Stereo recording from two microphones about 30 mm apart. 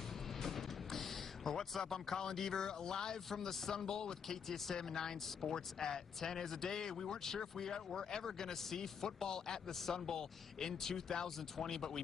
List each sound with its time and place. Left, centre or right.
0.4 s music: centre
3.3 s speech: centre